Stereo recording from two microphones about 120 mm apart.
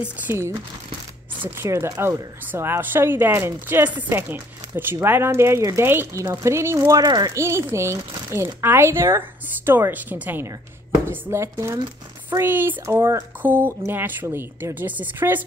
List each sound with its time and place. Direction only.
0.0 s speech: 20° right (ahead or behind)
1.6 s speech: 20° right (ahead or behind)